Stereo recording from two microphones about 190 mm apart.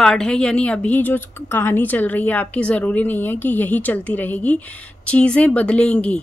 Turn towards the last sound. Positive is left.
turn(degrees=5)  # may be behind; listen again after turning